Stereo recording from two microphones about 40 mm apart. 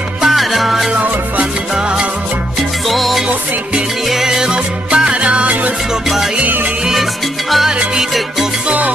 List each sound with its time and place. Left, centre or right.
0.2 s music: centre
2.9 s music: centre
4.1 s music: centre; by 5.5 s right
7.5 s music: centre
8.6 s music: right